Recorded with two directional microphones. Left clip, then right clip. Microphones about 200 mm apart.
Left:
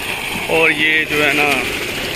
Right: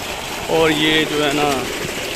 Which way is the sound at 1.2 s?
10° right (ahead or behind).